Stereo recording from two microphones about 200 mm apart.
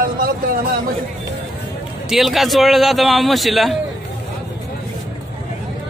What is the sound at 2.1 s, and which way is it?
A man's voice, centre (ahead or behind).